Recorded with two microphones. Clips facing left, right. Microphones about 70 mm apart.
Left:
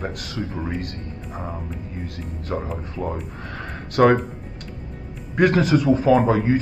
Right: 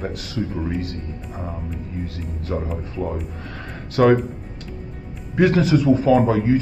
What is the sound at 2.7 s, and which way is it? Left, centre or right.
Speech, centre.